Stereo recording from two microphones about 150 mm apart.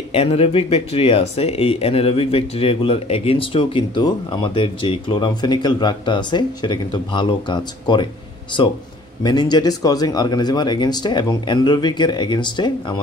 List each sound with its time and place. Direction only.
0.1 s speech: 40° left (ahead or behind)
9.2 s speech: 30° left (ahead or behind)